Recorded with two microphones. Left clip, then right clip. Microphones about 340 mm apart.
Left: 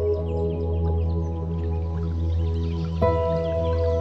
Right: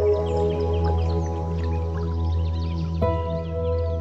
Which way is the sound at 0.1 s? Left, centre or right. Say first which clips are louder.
Right 4 dB; right.